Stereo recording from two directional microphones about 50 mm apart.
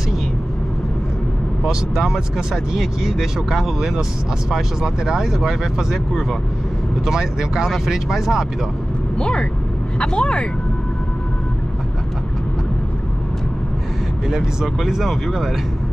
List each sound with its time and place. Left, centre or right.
1.7 s speech: centre
7.1 s speech: centre
9.2 s speech: centre
14.2 s speech: centre